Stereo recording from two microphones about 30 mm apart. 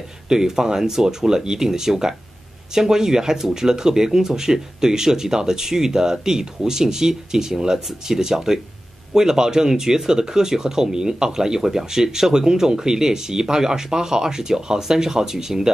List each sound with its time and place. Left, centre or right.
0.3 s speech: centre